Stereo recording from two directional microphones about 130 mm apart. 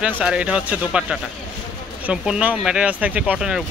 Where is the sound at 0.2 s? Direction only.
5° right (ahead or behind).